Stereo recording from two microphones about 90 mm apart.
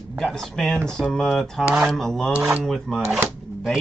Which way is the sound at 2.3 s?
10° right (ahead or behind).